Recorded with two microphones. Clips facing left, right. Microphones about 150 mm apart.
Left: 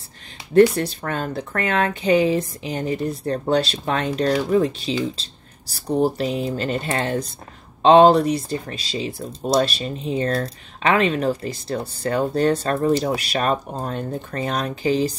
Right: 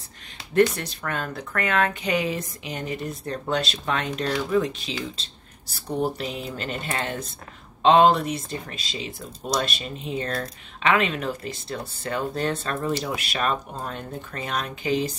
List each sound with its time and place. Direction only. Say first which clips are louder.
0.7 s speech: left 6 dB; 35° left (ahead or behind)